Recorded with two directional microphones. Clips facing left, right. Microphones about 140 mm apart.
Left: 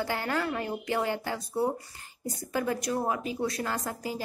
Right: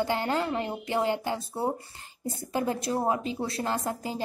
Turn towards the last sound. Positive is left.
turn(degrees=-30)  # may be behind; listen again after turning